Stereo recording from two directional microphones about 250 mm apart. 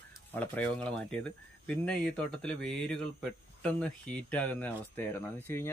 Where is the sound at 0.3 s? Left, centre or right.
Centre.